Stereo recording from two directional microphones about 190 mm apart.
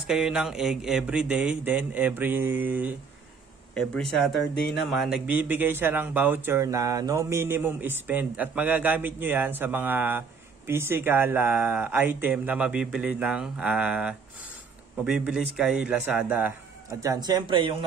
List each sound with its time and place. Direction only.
0.0 s speech: 5° right (ahead or behind)
3.7 s speech: 5° left (ahead or behind)
17.0 s speech: 20° right (ahead or behind)